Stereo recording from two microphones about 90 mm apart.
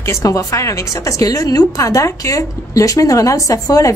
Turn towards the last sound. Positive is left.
turn(degrees=40)  # may be behind; listen again after turning